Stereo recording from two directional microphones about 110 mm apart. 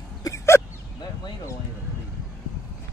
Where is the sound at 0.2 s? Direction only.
25° left (ahead or behind).